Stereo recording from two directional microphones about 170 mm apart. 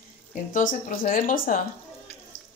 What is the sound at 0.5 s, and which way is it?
Speech, 55° left (ahead or behind).